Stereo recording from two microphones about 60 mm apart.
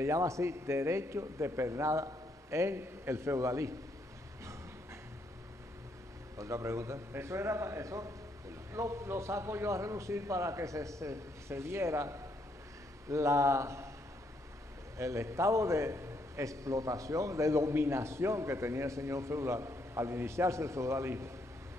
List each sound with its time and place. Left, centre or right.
0.0 s a man's voice: right
6.3 s a man's voice: right
15.0 s a man's voice: right